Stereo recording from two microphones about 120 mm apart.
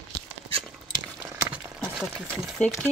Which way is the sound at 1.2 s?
15° right (ahead or behind).